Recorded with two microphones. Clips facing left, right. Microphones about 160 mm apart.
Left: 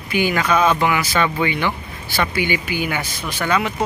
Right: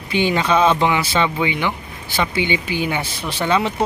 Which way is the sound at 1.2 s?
15° right (ahead or behind).